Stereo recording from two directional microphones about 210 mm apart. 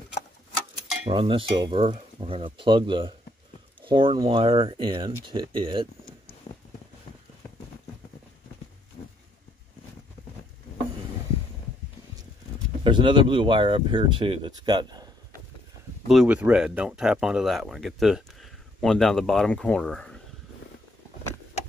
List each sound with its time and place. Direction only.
1.0 s speech: 25° right (ahead or behind)
6.5 s a sound: 30° left (ahead or behind)
12.8 s speech: 25° right (ahead or behind)
16.1 s speech: 5° right (ahead or behind)